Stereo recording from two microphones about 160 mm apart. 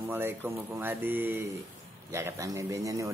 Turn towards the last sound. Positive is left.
turn(degrees=-20)  # may be behind; listen again after turning